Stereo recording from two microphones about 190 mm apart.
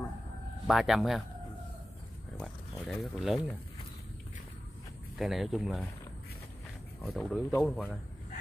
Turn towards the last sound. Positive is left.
turn(degrees=5)  # may be behind; listen again after turning